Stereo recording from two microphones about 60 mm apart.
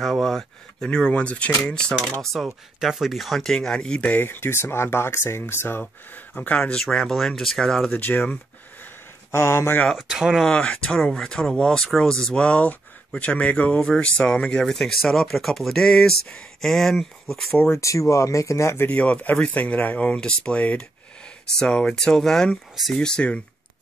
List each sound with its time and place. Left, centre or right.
0.0 s speech: centre
2.3 s speech: centre
4.2 s speech: left; by 7.9 s centre
7.9 s speech: left
9.3 s speech: left
9.9 s speech: centre
10.6 s speech: centre
11.0 s speech: centre; by 13.7 s left
13.7 s speech: centre
17.7 s speech: left
18.9 s speech: left